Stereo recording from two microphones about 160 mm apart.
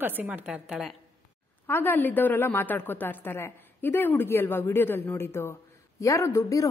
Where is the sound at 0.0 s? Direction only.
10° right (ahead or behind).